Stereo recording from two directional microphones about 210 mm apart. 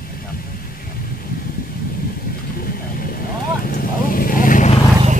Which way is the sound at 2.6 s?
45° left (ahead or behind).